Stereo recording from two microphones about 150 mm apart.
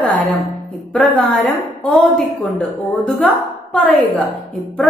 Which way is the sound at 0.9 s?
Centre (ahead or behind).